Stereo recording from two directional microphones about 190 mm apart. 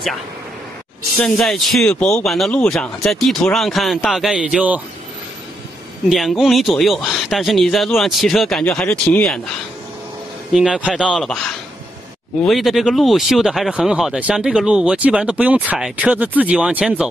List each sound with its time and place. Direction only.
1.2 s speech: centre (ahead or behind)
1.9 s speech: 15° left (ahead or behind)
2.1 s speech: centre (ahead or behind)
6.0 s speech: centre (ahead or behind)
10.5 s speech: 5° right (ahead or behind)
12.4 s speech: centre (ahead or behind)